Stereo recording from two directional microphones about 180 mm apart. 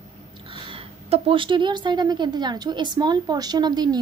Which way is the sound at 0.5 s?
30° right (ahead or behind).